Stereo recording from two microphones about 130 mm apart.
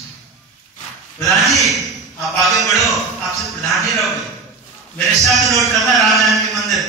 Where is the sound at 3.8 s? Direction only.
Centre (ahead or behind).